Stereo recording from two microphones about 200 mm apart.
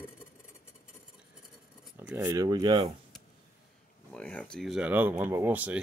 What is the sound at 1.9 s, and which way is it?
Speech, 10° right (ahead or behind).